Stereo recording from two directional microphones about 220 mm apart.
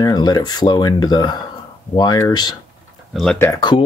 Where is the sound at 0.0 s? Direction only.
20° left (ahead or behind).